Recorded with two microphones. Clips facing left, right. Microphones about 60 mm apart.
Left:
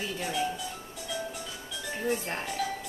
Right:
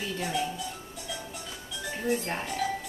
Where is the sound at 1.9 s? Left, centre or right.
Centre.